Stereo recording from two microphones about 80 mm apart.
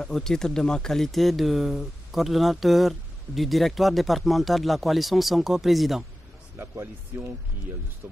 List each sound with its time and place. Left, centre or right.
0.0 s speech: centre
6.6 s speech: right